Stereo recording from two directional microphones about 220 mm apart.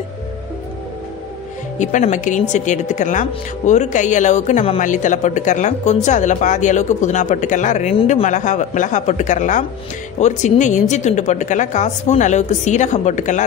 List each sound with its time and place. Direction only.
1.8 s a woman's voice: 35° left (ahead or behind)